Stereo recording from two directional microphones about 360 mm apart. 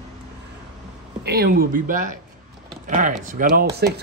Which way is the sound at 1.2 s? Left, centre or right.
Right.